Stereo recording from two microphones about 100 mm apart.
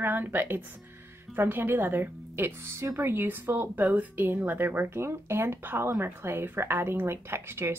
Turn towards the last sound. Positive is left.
turn(degrees=-25)  # may be behind; listen again after turning